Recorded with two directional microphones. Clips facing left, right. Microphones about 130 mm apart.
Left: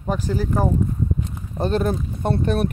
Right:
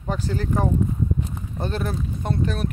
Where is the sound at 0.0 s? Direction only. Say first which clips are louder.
Left 3 dB; 10° left (ahead or behind).